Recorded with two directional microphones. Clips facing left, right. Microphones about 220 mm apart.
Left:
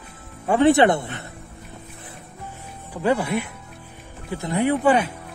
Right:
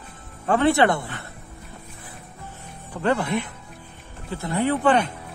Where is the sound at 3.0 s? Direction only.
10° left (ahead or behind).